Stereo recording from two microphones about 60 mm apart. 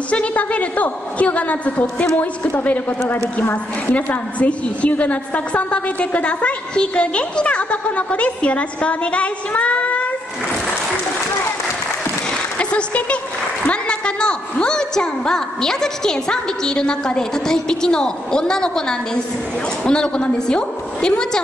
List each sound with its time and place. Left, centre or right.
0.1 s a woman's voice: left
3.9 s a woman's voice: left
12.5 s a sound: centre
13.7 s a woman's voice: centre